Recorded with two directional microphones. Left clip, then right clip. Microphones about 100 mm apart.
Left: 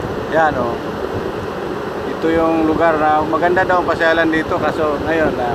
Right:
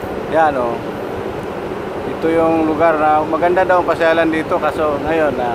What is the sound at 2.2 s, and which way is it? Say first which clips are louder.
Speech: right 1 dB; 15° right (ahead or behind).